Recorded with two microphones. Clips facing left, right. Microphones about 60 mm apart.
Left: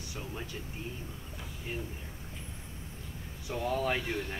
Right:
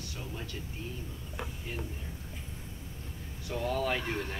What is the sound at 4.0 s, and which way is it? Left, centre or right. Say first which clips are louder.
Speech: even; right.